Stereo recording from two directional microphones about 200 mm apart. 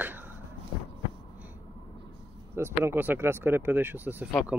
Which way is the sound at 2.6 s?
10° right (ahead or behind).